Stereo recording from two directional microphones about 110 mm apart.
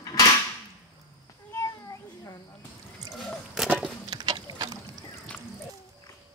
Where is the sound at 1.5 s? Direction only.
35° left (ahead or behind).